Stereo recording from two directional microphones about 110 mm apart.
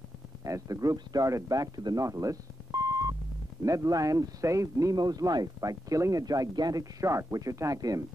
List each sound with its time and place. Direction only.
0.4 s speech: 30° right (ahead or behind)